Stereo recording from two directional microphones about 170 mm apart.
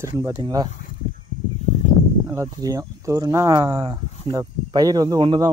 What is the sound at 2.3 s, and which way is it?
Speech, 20° right (ahead or behind).